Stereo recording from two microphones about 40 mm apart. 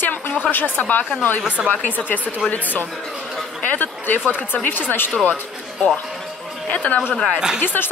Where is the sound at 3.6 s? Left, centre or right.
Left.